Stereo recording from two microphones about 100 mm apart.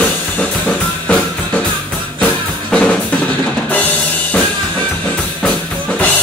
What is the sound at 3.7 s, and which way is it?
Drum, 15° left (ahead or behind).